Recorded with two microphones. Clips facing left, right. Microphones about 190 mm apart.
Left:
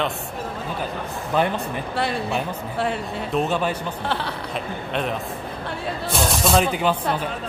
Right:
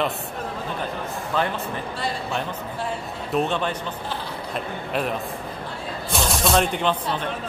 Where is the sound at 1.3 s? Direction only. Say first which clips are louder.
Left 3 dB; 15° left (ahead or behind).